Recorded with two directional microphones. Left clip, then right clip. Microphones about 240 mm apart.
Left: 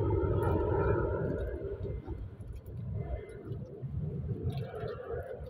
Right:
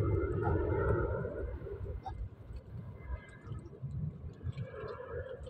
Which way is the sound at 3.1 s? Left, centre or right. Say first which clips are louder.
Left 7 dB; left.